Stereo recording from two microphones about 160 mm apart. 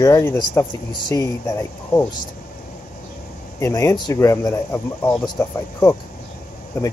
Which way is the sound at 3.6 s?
15° left (ahead or behind).